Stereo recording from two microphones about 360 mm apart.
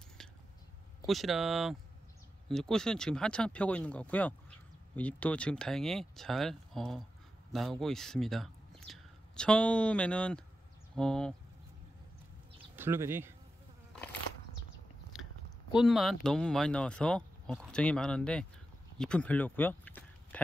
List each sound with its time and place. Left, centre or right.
1.0 s speech: centre
12.7 s speech: centre
15.1 s chewing: centre
15.7 s speech: centre
18.9 s a sound: centre